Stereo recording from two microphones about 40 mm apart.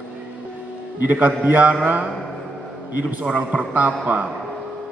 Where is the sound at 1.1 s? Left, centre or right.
Right.